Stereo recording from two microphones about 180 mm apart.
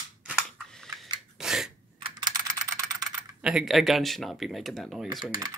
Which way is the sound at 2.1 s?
20° right (ahead or behind).